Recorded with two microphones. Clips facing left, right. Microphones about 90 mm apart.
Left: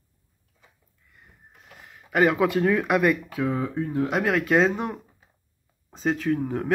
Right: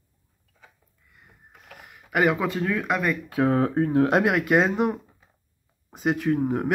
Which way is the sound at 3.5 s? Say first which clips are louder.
Right 8 dB; 65° right (ahead or behind).